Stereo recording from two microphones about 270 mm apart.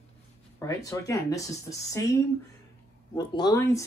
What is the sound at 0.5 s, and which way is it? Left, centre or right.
Speech, centre.